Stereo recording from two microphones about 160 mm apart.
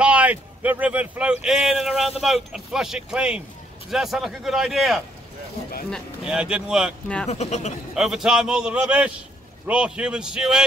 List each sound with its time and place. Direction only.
0.0 s a man's voice: 10° right (ahead or behind)
7.2 s speech: 45° left (ahead or behind)
7.9 s a man's voice: 5° right (ahead or behind)